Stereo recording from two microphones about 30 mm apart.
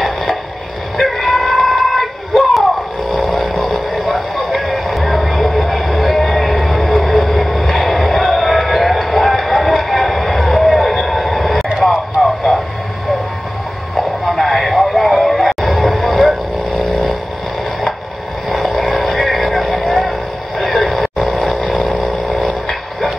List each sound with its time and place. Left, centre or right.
0.0 s a sound: centre
4.5 s vehicle: centre
11.8 s a sound: centre
13.9 s music: centre
15.8 s vehicle: centre
18.8 s vehicle: centre